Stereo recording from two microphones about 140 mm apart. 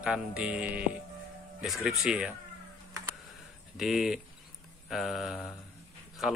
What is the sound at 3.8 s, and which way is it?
Speech, centre (ahead or behind).